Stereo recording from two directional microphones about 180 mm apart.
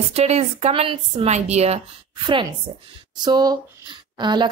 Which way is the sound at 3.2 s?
20° right (ahead or behind).